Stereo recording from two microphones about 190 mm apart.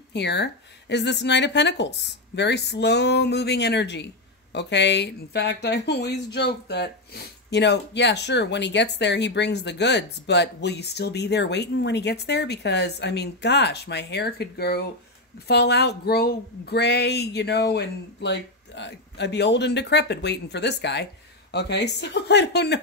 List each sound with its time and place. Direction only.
0.1 s a woman's voice: 65° left (ahead or behind)